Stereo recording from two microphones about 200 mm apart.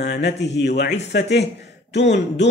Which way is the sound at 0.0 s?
55° left (ahead or behind).